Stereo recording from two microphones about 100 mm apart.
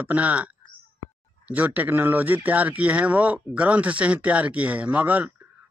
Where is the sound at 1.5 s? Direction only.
15° right (ahead or behind).